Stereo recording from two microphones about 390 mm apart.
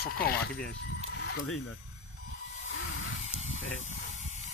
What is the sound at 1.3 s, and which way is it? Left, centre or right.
Speech, left.